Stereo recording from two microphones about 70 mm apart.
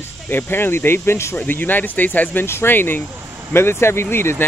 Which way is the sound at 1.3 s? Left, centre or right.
Left.